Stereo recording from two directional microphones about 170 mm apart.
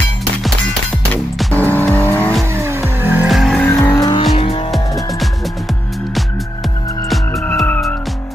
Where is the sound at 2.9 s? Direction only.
10° right (ahead or behind).